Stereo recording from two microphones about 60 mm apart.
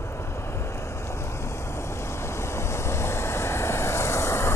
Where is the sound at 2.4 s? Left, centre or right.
Left.